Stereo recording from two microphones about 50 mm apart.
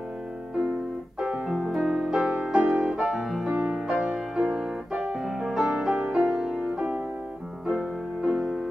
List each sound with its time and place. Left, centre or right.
1.5 s music: centre
2.2 s music: right
2.7 s piano: centre
3.7 s music: centre
4.6 s piano: centre
5.2 s music: centre